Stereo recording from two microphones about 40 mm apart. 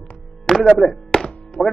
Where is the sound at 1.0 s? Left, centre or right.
Left.